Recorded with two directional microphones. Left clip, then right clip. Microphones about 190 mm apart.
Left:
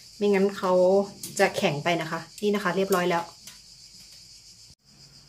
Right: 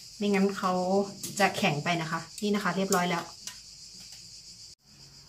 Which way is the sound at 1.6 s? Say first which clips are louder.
Left 3 dB; 45° left (ahead or behind).